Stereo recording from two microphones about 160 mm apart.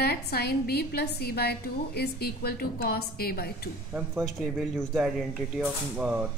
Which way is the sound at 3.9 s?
5° right (ahead or behind).